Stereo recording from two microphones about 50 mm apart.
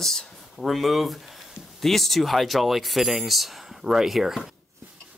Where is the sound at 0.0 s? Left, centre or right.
Centre.